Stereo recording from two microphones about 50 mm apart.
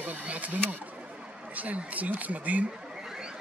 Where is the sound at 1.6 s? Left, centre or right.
Right.